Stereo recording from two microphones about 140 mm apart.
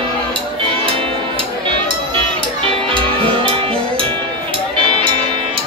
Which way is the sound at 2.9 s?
40° right (ahead or behind).